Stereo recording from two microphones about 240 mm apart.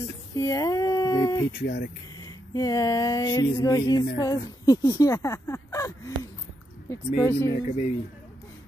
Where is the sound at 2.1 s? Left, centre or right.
Centre.